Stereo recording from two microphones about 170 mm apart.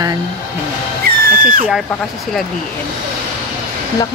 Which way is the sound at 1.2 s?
60° right (ahead or behind).